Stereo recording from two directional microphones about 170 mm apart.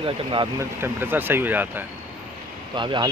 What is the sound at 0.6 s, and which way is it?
Speech, 15° right (ahead or behind).